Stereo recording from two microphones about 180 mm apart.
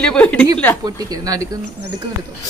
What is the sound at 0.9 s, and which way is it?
Speech, 20° right (ahead or behind).